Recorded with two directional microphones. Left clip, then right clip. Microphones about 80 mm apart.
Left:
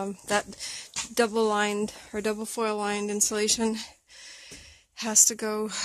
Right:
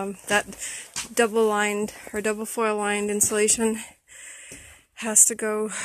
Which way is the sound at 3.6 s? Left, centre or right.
Centre.